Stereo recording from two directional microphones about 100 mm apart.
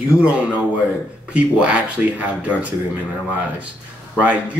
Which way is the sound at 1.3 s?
10° right (ahead or behind).